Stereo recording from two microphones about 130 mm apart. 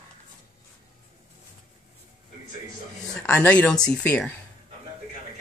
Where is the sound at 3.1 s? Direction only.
10° left (ahead or behind).